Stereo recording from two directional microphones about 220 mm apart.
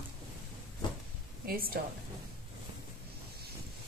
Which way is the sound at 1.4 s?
40° right (ahead or behind).